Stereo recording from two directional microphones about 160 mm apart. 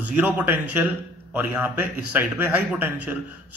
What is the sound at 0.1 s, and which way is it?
A man's voice, 10° right (ahead or behind).